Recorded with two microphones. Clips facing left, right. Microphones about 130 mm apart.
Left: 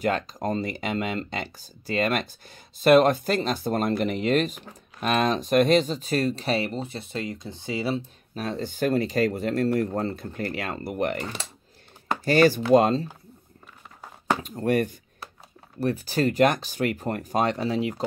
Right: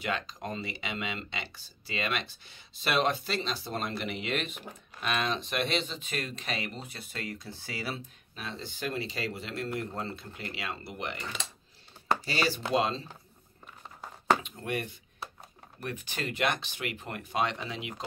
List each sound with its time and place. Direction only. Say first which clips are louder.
0.0 s speech: left 9 dB; 45° left (ahead or behind); by 8.0 s 25° left (ahead or behind)
8.4 s speech: left 11 dB; 45° left (ahead or behind)
12.3 s speech: left 17 dB; 50° left (ahead or behind)
14.4 s speech: left 11 dB; 40° left (ahead or behind)